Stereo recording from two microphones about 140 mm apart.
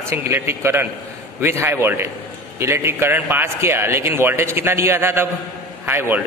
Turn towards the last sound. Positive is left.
turn(degrees=-15)  # may be behind; listen again after turning